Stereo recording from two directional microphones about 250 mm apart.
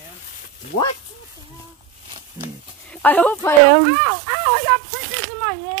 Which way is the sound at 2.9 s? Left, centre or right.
Centre.